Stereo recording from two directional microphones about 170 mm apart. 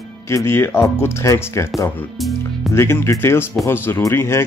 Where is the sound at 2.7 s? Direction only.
15° left (ahead or behind).